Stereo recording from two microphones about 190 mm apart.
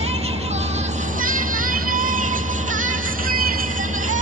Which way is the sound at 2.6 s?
45° right (ahead or behind).